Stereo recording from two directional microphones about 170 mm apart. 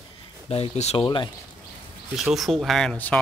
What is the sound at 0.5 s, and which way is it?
Speech, 40° left (ahead or behind).